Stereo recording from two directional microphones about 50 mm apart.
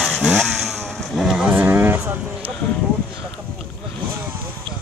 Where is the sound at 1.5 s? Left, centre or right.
Right.